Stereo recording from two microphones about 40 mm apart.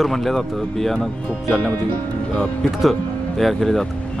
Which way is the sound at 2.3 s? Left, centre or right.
Left.